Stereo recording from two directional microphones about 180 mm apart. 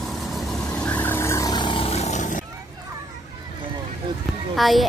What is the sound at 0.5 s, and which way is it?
Vehicle, 5° left (ahead or behind).